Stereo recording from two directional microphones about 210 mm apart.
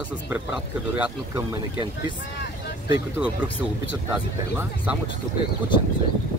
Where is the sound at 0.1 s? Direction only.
5° right (ahead or behind).